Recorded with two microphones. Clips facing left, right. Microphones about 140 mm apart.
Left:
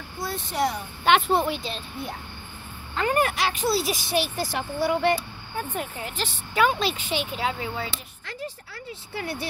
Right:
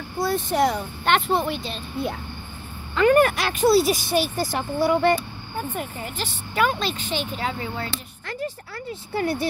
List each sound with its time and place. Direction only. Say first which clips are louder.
0.3 s speech: right 5 dB; 50° right (ahead or behind)
1.0 s a woman's voice: left 1 dB; centre (ahead or behind)
2.9 s speech: right 7 dB; 70° right (ahead or behind); by 5.2 s 45° right (ahead or behind)
5.6 s a woman's voice: right 1 dB; centre (ahead or behind)
8.3 s speech: right 5 dB; 50° right (ahead or behind)